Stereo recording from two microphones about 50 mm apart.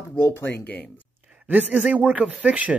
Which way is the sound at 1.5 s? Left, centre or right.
Right.